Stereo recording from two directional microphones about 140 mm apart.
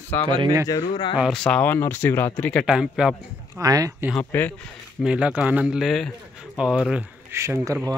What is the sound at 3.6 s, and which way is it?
Speech, 25° right (ahead or behind).